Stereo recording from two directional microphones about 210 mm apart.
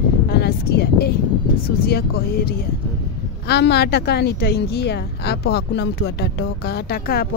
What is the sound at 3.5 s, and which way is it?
A woman's voice, 50° left (ahead or behind).